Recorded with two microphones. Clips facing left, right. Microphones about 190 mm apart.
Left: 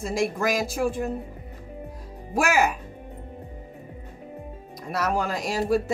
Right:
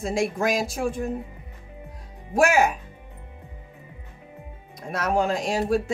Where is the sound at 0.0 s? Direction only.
55° right (ahead or behind).